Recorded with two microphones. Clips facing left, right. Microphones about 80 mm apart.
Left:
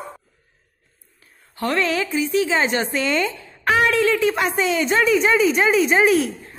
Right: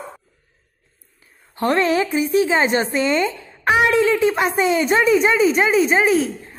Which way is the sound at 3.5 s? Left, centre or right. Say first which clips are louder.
Right 2 dB; centre.